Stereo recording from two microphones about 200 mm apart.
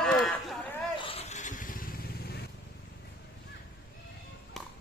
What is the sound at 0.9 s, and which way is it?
Vehicle, 30° left (ahead or behind).